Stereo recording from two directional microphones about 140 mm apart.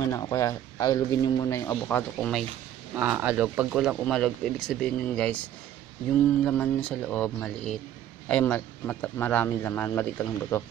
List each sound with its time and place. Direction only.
0.1 s speech: 20° left (ahead or behind)
2.1 s speech: 5° left (ahead or behind)
3.0 s speech: 15° right (ahead or behind); by 5.4 s 10° left (ahead or behind)
6.4 s speech: 5° left (ahead or behind)